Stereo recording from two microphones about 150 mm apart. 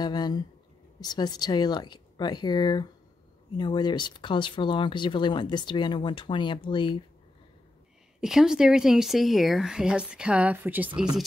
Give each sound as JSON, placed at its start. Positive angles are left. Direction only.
{"t": 0.0, "sound": "speech", "side_deg": 25}
{"t": 8.2, "sound": "speech", "side_deg": -5}